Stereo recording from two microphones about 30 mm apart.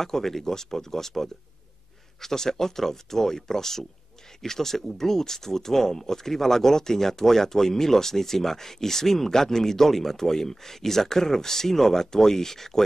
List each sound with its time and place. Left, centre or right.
0.0 s speech: centre